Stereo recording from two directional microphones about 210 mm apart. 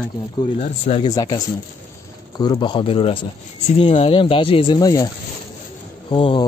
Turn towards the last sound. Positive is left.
turn(degrees=25)  # may be behind; listen again after turning